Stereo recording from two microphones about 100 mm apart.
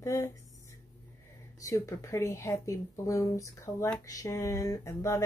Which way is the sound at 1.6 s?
30° left (ahead or behind).